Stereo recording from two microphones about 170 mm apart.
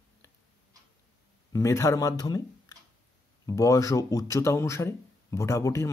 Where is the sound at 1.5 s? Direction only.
15° left (ahead or behind).